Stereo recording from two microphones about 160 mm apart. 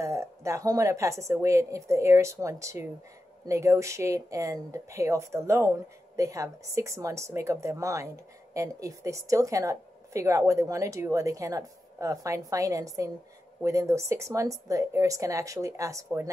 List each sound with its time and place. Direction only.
0.0 s speech: 20° right (ahead or behind)